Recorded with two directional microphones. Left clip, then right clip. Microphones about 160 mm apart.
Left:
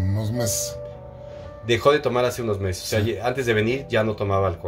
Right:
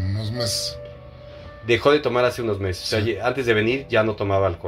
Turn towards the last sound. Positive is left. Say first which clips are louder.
# right 2 dB
turn(degrees=-10)  # may be behind; listen again after turning